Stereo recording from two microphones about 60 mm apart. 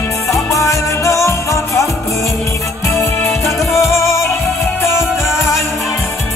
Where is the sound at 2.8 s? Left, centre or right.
Left.